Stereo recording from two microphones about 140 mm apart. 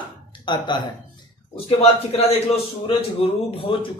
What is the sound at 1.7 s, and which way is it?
A man's voice, 45° left (ahead or behind).